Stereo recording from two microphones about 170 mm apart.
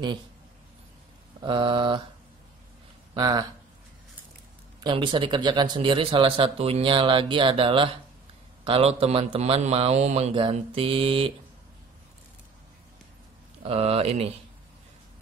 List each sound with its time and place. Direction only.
1.4 s speech: 30° right (ahead or behind)
3.2 s speech: 20° right (ahead or behind)
4.8 s a man's voice: 30° right (ahead or behind)
13.6 s speech: 35° right (ahead or behind)